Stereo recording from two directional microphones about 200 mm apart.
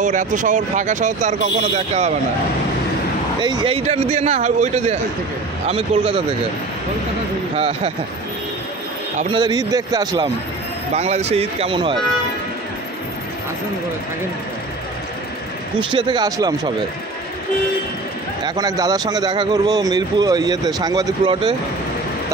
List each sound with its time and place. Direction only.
0.0 s speech: 40° right (ahead or behind)
3.3 s a man's voice: 25° right (ahead or behind)
7.5 s a man's voice: 30° right (ahead or behind)
9.3 s a man's voice: 20° right (ahead or behind)
11.0 s speech: 35° right (ahead or behind)
15.8 s a man's voice: 25° right (ahead or behind)
18.4 s a man's voice: 20° right (ahead or behind)